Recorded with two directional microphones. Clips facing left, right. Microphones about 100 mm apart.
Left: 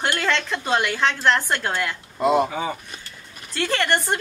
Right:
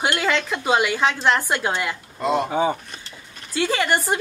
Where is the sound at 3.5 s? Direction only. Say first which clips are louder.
Right 1 dB; 5° right (ahead or behind).